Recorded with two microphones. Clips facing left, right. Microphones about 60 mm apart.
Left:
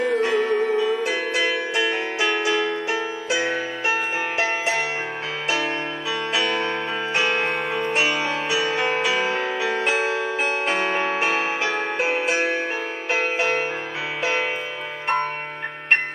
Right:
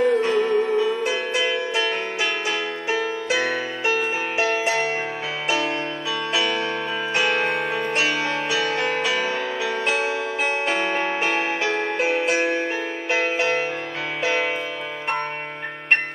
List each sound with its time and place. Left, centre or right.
0.0 s music: centre
6.3 s music: centre
7.9 s music: centre
11.0 s music: centre